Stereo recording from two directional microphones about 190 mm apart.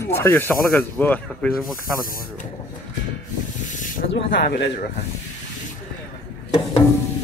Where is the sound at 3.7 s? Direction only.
45° left (ahead or behind).